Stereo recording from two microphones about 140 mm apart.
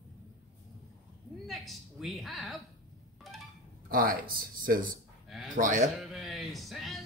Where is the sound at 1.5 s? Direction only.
Centre (ahead or behind).